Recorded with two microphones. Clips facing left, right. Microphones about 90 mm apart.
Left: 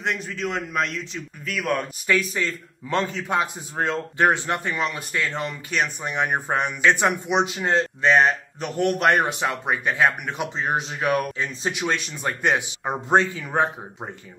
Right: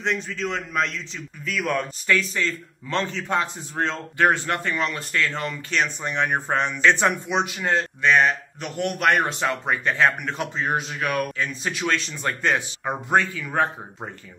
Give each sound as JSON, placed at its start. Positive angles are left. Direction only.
{"t": 0.0, "sound": "a man's voice", "side_deg": 5}
{"t": 9.2, "sound": "a man's voice", "side_deg": 15}